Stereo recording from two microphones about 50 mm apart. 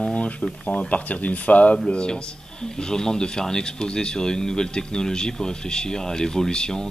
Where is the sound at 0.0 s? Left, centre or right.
Left.